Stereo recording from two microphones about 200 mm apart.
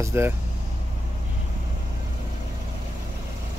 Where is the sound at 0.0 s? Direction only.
10° right (ahead or behind).